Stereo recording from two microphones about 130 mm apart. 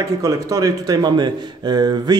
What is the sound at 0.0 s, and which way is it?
Speech, 25° right (ahead or behind).